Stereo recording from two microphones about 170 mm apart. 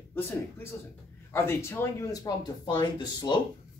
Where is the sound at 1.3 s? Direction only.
15° left (ahead or behind).